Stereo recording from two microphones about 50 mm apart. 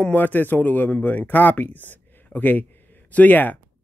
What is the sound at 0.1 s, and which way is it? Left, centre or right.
Speech, left.